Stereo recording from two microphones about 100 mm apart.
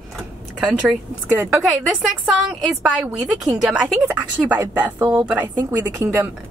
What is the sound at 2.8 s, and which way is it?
A woman's voice, 5° right (ahead or behind).